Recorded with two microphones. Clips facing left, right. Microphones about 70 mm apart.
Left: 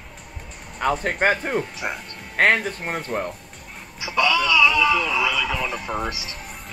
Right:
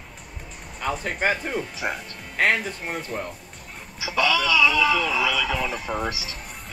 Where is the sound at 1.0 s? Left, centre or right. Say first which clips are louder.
Left 4 dB; left.